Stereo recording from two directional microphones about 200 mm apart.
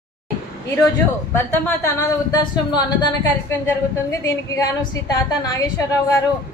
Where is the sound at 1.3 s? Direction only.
15° left (ahead or behind).